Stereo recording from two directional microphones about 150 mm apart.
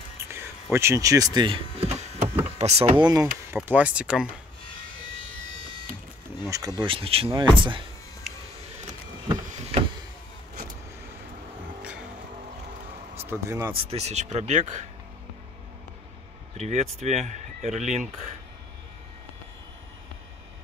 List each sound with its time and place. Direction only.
0.7 s speech: 20° right (ahead or behind); by 3.0 s 45° right (ahead or behind)
3.0 s speech: 25° right (ahead or behind)
3.5 s speech: 10° right (ahead or behind)
6.5 s speech: 25° right (ahead or behind)
9.5 s a sound: 45° right (ahead or behind)
13.3 s speech: 20° right (ahead or behind)
13.8 s speech: 45° right (ahead or behind)
16.5 s speech: 50° right (ahead or behind)